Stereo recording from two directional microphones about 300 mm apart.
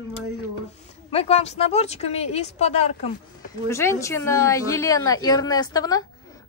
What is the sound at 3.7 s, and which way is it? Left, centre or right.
A woman's voice, centre.